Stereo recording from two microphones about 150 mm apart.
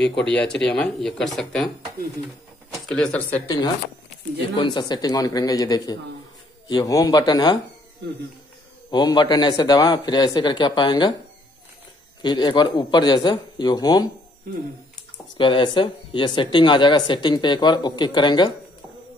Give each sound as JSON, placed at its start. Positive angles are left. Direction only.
{"t": 0.2, "sound": "speech", "side_deg": 5}
{"t": 2.7, "sound": "speech", "side_deg": 5}
{"t": 4.6, "sound": "speech", "side_deg": 30}
{"t": 8.9, "sound": "speech", "side_deg": 30}
{"t": 12.2, "sound": "speech", "side_deg": 30}
{"t": 15.3, "sound": "speech", "side_deg": 35}